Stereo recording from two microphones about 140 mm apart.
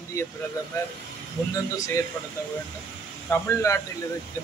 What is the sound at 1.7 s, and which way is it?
Speech, 25° left (ahead or behind).